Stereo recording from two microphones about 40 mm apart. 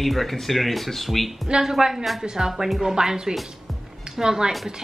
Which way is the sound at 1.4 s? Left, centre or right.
Right.